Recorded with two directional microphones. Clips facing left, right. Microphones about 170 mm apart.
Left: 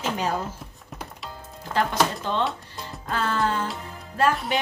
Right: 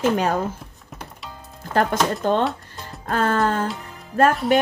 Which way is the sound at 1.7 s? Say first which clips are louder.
Right 3 dB; 50° right (ahead or behind).